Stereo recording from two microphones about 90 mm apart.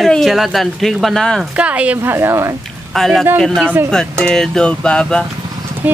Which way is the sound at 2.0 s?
30° right (ahead or behind).